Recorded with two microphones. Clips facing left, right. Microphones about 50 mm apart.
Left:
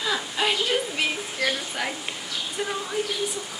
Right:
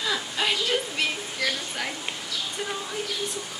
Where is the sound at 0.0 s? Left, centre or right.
Centre.